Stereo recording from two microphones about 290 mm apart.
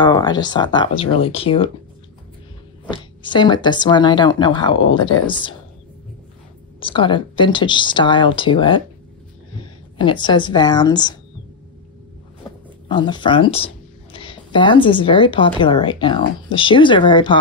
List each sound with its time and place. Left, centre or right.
0.0 s speech: centre
2.9 s speech: centre
6.8 s speech: centre
12.4 s a sound: centre
12.8 s speech: centre